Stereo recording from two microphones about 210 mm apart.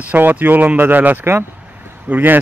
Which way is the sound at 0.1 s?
10° right (ahead or behind).